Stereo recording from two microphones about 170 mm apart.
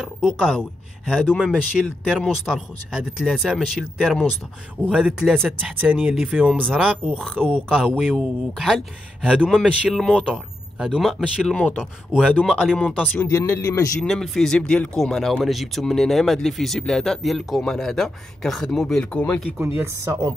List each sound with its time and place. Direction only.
0.0 s speech: centre (ahead or behind)
11.8 s speech: 5° right (ahead or behind)
13.2 s speech: 15° left (ahead or behind)
14.0 s speech: centre (ahead or behind)
19.6 s speech: 15° right (ahead or behind)